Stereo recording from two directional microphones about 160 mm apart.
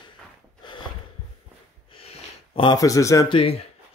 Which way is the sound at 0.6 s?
30° left (ahead or behind).